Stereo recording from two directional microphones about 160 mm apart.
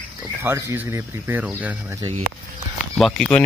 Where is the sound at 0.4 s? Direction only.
20° right (ahead or behind).